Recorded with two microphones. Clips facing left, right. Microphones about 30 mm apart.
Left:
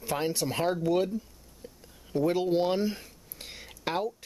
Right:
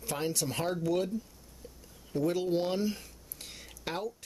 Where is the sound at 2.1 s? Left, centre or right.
Left.